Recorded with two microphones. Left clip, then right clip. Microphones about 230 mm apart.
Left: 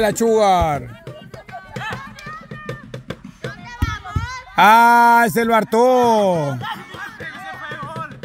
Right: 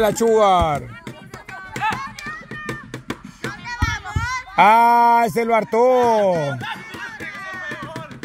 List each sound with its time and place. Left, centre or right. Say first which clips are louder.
0.0 s speech: even; centre
2.0 s music: right 3 dB; right
4.6 s speech: left 2 dB; left